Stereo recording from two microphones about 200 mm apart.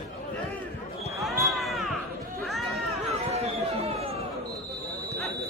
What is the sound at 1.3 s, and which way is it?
Basketball bounce, centre (ahead or behind).